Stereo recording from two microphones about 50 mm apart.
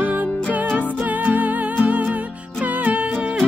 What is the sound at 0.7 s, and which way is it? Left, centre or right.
Music, right.